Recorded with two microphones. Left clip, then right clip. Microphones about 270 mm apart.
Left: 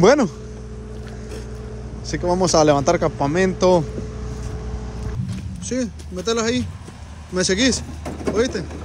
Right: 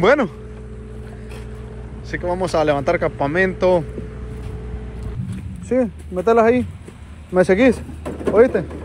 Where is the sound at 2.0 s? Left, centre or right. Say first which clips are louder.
Left 2 dB; centre.